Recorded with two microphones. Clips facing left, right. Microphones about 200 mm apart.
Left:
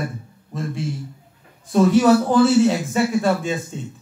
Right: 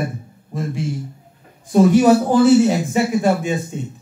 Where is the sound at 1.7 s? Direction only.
15° right (ahead or behind).